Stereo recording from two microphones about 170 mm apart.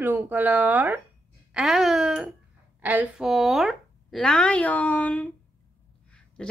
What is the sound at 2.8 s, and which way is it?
Speech, 10° right (ahead or behind).